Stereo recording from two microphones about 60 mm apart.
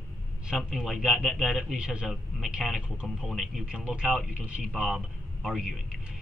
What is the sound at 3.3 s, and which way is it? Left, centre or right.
Speech, centre.